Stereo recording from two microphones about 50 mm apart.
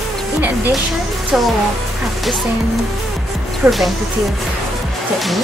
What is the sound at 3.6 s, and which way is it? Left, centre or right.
Speech, centre.